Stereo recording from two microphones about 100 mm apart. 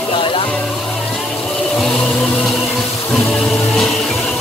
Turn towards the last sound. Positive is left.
turn(degrees=0)  # may be behind; listen again after turning